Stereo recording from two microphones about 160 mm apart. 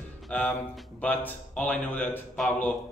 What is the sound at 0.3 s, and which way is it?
Speech, 10° left (ahead or behind).